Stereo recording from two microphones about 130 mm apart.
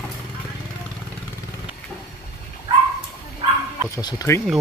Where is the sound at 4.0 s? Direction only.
30° left (ahead or behind).